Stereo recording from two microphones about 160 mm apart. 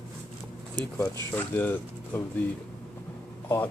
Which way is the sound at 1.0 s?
15° left (ahead or behind).